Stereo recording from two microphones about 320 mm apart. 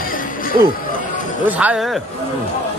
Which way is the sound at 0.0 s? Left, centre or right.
Left.